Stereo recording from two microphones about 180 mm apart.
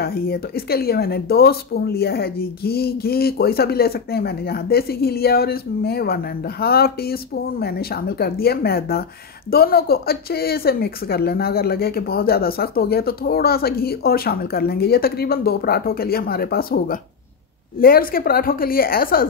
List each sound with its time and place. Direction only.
0.0 s speech: 60° left (ahead or behind)